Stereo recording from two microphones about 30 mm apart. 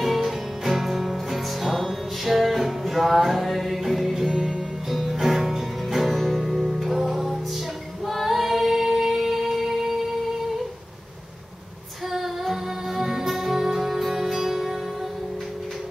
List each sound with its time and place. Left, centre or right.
0.0 s music: centre
4.3 s music: centre
4.9 s music: centre
6.1 s music: centre
6.8 s music: centre
8.1 s female singing: centre
12.1 s music: centre